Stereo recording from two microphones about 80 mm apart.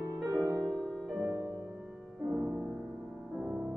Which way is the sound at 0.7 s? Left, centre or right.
Centre.